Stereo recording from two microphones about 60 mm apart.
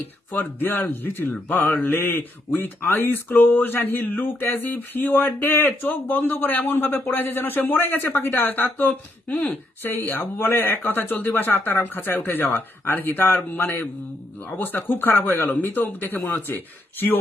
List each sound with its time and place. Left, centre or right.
0.3 s speech: left